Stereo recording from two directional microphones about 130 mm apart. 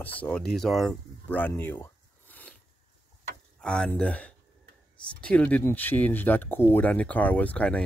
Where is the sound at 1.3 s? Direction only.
15° left (ahead or behind).